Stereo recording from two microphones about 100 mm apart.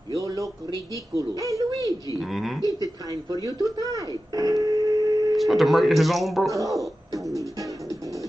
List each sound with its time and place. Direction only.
0.1 s a sound: 35° right (ahead or behind)
1.1 s speech: 35° right (ahead or behind)
2.1 s speech: centre (ahead or behind)
2.6 s speech: 35° right (ahead or behind)
5.3 s speech: centre (ahead or behind)
6.5 s speech: 35° right (ahead or behind)